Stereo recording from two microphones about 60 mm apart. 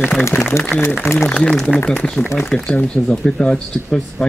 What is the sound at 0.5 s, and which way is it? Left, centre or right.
Speech, left.